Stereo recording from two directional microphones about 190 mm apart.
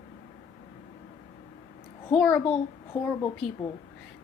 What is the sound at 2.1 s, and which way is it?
Speech, 5° left (ahead or behind).